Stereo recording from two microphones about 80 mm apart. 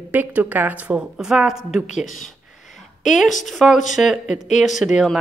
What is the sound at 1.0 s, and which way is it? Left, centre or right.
A woman's voice, centre.